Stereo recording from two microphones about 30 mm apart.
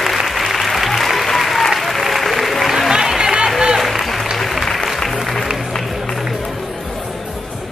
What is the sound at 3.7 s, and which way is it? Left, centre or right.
Applause, centre.